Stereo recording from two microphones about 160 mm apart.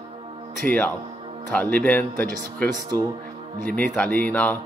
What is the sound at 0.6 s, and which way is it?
Speech, 10° left (ahead or behind).